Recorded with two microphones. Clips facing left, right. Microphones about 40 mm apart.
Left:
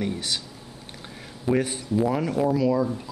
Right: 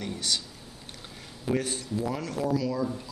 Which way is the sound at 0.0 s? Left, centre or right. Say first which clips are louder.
Left 3 dB; centre.